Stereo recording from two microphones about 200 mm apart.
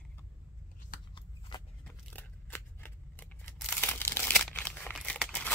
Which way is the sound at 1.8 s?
10° left (ahead or behind).